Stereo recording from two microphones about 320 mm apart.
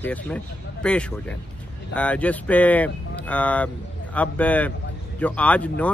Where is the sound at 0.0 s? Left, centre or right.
Centre.